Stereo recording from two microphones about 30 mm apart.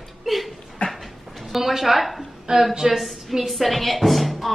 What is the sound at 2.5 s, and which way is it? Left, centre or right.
Speech, right.